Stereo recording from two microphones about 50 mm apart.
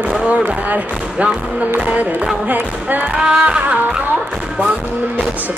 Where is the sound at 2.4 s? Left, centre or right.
Right.